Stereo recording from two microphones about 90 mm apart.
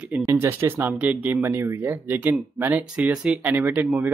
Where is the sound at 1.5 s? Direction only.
30° right (ahead or behind).